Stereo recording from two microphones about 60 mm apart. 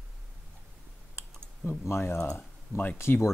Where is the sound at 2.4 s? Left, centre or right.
Left.